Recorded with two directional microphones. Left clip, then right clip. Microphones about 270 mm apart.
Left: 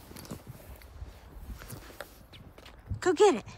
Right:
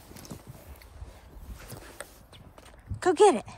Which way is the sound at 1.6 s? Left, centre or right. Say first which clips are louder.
Right 2 dB; right.